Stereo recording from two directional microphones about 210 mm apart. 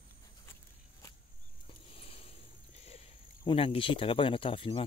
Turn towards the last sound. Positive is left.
turn(degrees=25)  # may be behind; listen again after turning